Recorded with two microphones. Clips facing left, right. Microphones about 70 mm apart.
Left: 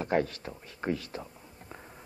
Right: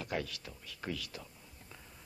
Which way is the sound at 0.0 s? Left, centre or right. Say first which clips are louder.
Left 10 dB; left.